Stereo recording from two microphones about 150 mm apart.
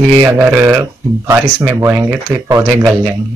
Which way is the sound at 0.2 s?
10° right (ahead or behind).